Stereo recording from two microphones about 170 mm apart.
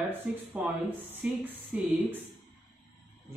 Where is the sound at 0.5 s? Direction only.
10° right (ahead or behind).